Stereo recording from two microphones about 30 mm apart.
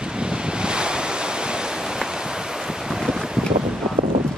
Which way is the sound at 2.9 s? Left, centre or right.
Centre.